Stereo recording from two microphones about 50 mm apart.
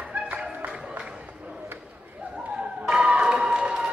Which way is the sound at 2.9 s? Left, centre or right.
Right.